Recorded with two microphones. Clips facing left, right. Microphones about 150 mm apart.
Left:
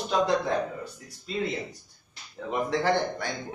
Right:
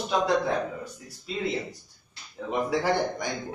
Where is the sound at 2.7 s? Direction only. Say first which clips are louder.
Left 1 dB; 10° right (ahead or behind).